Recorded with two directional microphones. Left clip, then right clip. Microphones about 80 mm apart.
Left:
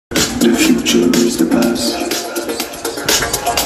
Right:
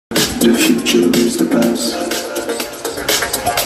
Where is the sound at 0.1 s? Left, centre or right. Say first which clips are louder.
Even; left.